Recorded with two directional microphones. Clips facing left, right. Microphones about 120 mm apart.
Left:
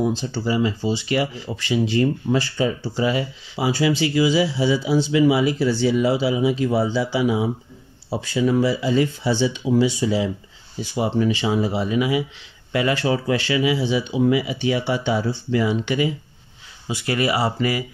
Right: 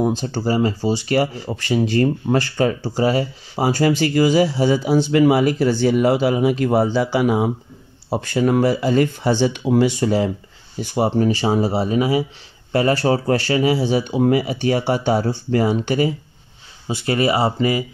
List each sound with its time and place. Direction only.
0.0 s speech: 50° right (ahead or behind)
16.8 s speech: 30° right (ahead or behind)